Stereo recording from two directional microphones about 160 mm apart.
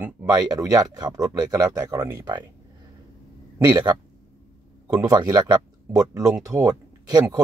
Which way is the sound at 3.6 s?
25° right (ahead or behind).